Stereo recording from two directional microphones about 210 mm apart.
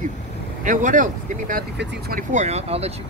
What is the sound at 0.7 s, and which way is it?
Speech, 40° right (ahead or behind).